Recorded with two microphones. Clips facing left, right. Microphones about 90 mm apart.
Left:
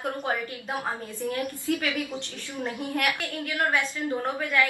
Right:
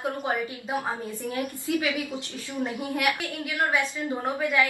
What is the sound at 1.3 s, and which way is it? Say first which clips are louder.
Speech: even; 20° right (ahead or behind).